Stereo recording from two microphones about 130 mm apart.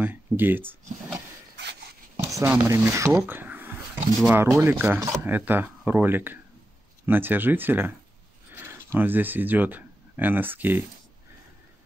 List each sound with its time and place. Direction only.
0.0 s speech: 15° right (ahead or behind)
2.1 s a sound: 20° right (ahead or behind)
2.7 s speech: 20° right (ahead or behind)